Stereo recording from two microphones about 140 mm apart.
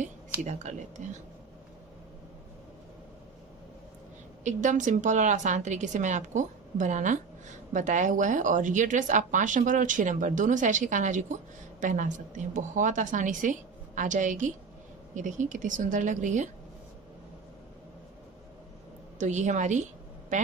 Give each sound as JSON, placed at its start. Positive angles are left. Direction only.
{"t": 0.5, "sound": "speech", "side_deg": -60}
{"t": 4.5, "sound": "speech", "side_deg": -60}
{"t": 19.1, "sound": "a woman's voice", "side_deg": -60}